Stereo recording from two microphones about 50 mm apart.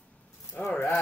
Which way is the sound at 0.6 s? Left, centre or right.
Left.